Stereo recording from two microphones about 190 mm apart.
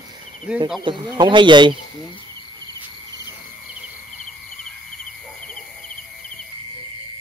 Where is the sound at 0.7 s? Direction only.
20° right (ahead or behind).